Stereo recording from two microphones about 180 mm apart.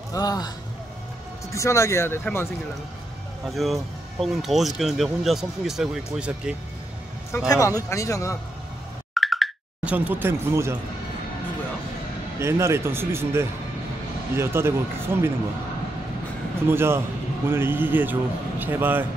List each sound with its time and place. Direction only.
0.1 s a man's voice: 20° left (ahead or behind)
1.5 s speech: 15° left (ahead or behind)
3.4 s speech: centre (ahead or behind)
7.3 s speech: 15° left (ahead or behind)
9.1 s plop: centre (ahead or behind)
12.4 s speech: 15° right (ahead or behind)
16.6 s speech: 15° right (ahead or behind)